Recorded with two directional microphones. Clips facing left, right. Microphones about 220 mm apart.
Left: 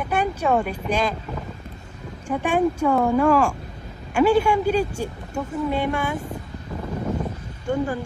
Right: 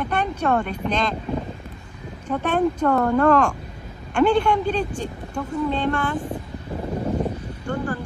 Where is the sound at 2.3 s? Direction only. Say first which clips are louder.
Even; 10° left (ahead or behind).